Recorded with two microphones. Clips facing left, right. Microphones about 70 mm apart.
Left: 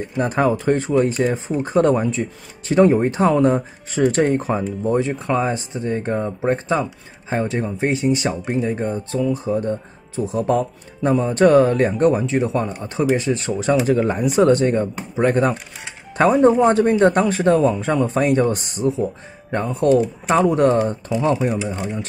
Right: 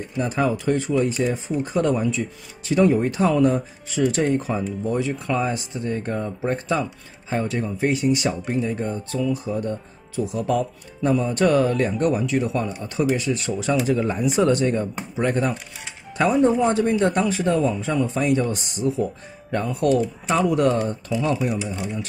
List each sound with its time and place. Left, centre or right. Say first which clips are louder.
0.2 s speech: left 4 dB; left
18.4 s speech: left 5 dB; left